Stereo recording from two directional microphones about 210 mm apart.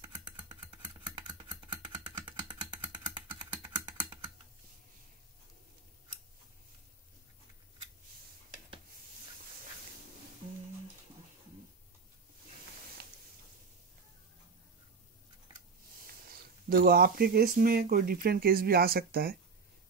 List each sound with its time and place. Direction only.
0.0 s typing: 20° right (ahead or behind)
2.2 s vehicle: 20° right (ahead or behind)
3.2 s typing: 10° right (ahead or behind)
13.0 s a sound: 50° right (ahead or behind)
16.3 s speech: 45° right (ahead or behind)